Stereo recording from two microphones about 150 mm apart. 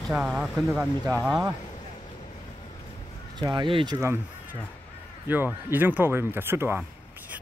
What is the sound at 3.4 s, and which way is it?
Speech, 30° right (ahead or behind).